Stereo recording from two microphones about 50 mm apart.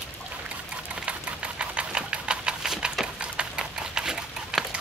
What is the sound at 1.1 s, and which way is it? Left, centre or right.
Sewing machine, right.